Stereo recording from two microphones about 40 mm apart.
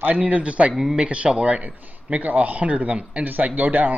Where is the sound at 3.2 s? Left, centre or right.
Right.